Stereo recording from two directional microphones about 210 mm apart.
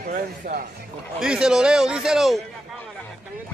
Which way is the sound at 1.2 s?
5° right (ahead or behind).